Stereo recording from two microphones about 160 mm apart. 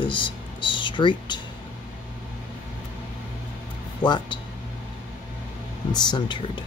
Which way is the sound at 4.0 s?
30° left (ahead or behind).